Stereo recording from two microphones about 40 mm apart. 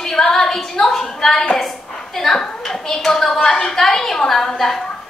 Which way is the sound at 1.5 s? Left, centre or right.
Centre.